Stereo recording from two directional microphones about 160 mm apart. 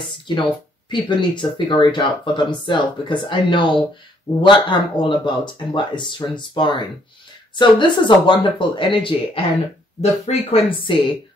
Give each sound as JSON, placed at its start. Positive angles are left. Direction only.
{"t": 0.9, "sound": "speech", "side_deg": 30}